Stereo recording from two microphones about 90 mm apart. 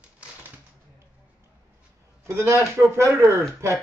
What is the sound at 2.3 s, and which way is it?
Speech, 30° right (ahead or behind).